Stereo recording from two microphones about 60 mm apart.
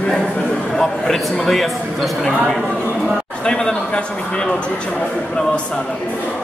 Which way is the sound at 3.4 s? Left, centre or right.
Centre.